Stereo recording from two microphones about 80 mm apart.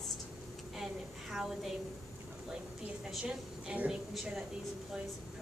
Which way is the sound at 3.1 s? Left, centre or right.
Centre.